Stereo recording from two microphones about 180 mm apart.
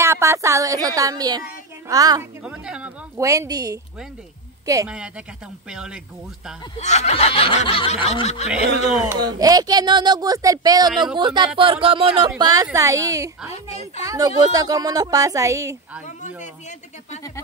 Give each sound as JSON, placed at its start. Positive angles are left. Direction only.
{"t": 0.0, "sound": "speech", "side_deg": -15}
{"t": 2.4, "sound": "speech", "side_deg": -5}
{"t": 3.2, "sound": "speech", "side_deg": -20}
{"t": 4.8, "sound": "speech", "side_deg": -5}
{"t": 6.8, "sound": "snicker", "side_deg": 40}
{"t": 9.0, "sound": "a woman's voice", "side_deg": -20}
{"t": 16.1, "sound": "a man's voice", "side_deg": 45}